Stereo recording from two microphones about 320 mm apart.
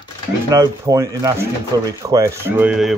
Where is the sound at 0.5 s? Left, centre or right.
Centre.